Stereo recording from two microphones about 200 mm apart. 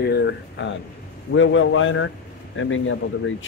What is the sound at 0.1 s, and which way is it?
Speech, 55° left (ahead or behind).